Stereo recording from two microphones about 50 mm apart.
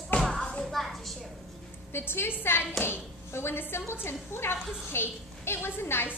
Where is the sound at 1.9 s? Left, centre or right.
Left.